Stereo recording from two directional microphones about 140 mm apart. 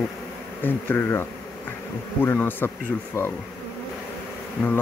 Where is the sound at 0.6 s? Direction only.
15° left (ahead or behind).